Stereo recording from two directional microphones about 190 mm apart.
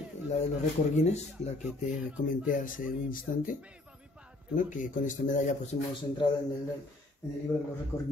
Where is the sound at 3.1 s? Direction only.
45° left (ahead or behind).